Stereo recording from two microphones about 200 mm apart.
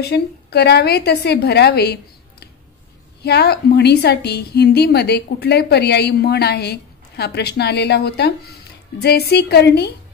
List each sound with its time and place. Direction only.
0.0 s a woman's voice: 55° left (ahead or behind)
3.2 s a woman's voice: 55° left (ahead or behind)